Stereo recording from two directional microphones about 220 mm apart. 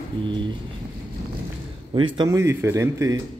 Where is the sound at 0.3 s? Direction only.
20° right (ahead or behind).